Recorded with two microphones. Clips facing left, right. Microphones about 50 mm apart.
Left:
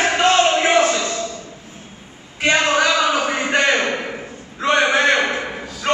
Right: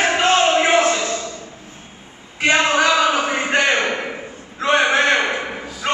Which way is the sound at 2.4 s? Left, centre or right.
Centre.